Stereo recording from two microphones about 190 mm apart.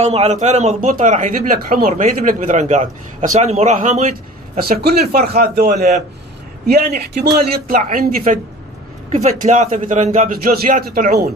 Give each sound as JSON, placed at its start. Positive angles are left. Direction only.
{"t": 0.0, "sound": "speech", "side_deg": -35}
{"t": 4.6, "sound": "speech", "side_deg": -55}